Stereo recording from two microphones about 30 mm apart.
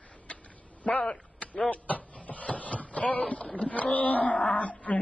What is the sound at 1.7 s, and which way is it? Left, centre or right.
Shuffle, left.